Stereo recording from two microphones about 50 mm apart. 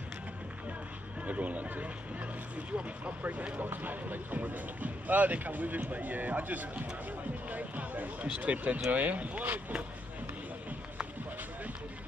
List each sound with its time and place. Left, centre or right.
1.2 s speech: right
3.6 s speech: right